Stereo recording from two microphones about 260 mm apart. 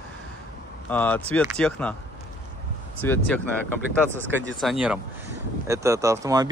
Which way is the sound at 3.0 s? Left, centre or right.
Centre.